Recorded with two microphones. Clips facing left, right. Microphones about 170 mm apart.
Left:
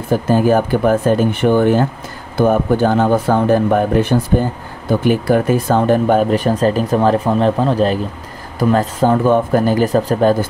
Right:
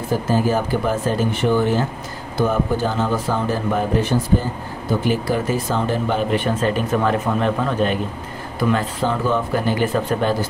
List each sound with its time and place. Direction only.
0.3 s speech: 55° left (ahead or behind); by 10.3 s 40° left (ahead or behind)